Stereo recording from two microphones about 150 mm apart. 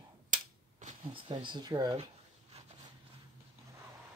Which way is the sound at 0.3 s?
55° right (ahead or behind).